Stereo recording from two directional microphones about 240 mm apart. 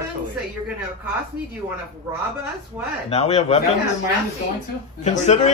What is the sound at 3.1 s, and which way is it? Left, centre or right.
Speech, left.